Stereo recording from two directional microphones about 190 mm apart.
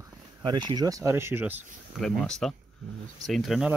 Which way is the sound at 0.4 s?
25° right (ahead or behind).